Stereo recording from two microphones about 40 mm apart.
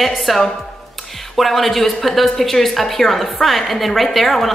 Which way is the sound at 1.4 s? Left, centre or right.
Centre.